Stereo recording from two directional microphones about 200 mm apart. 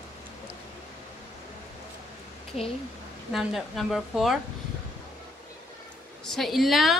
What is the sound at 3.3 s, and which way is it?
A woman's voice, centre (ahead or behind).